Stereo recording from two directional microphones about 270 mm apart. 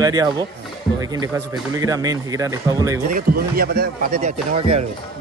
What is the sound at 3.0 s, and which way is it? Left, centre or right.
Speech, right.